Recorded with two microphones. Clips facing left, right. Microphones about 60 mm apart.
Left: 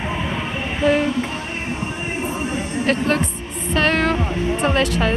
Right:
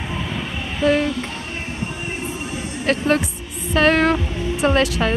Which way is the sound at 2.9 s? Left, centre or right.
Centre.